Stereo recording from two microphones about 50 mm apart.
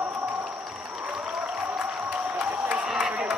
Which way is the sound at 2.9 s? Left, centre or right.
Centre.